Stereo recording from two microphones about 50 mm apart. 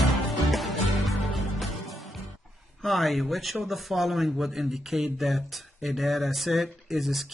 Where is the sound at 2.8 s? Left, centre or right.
Centre.